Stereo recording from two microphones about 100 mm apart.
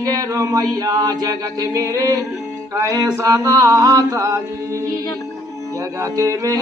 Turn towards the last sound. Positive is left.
turn(degrees=-35)  # may be behind; listen again after turning